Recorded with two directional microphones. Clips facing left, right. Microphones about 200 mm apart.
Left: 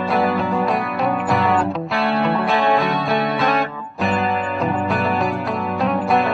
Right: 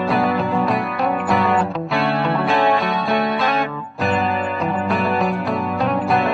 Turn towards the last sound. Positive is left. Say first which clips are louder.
# even
turn(degrees=0)  # may be behind; listen again after turning